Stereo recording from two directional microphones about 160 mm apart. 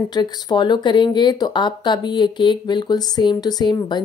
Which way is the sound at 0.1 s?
25° left (ahead or behind).